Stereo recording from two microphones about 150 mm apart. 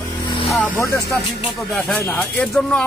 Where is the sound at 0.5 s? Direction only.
20° left (ahead or behind).